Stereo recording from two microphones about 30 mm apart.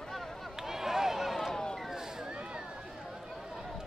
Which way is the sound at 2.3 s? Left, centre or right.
Right.